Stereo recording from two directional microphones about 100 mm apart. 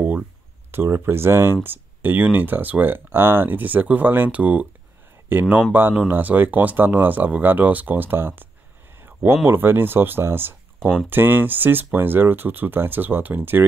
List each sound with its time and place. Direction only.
0.7 s speech: 30° right (ahead or behind)